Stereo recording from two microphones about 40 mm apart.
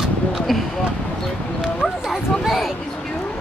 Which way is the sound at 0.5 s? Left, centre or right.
Centre.